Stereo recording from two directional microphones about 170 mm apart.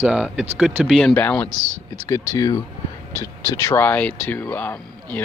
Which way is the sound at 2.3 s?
20° left (ahead or behind).